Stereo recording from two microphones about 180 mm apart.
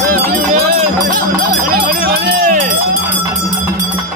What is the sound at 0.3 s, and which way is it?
Run, 45° right (ahead or behind).